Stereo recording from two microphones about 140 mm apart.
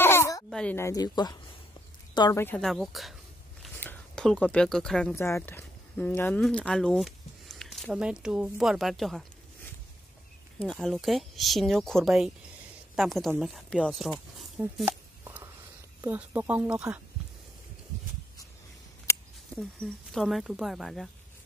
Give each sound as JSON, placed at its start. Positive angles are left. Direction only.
{"t": 0.0, "sound": "a sound", "side_deg": 15}
{"t": 0.5, "sound": "a sound", "side_deg": 5}
{"t": 0.7, "sound": "speech", "side_deg": 25}
{"t": 2.3, "sound": "speech", "side_deg": 15}
{"t": 2.6, "sound": "speech", "side_deg": 0}
{"t": 3.7, "sound": "speech", "side_deg": 10}
{"t": 5.1, "sound": "speech", "side_deg": 20}
{"t": 10.6, "sound": "a woman's voice", "side_deg": 5}
{"t": 14.9, "sound": "a sound", "side_deg": -15}
{"t": 16.1, "sound": "speech", "side_deg": -10}
{"t": 19.5, "sound": "speech", "side_deg": 5}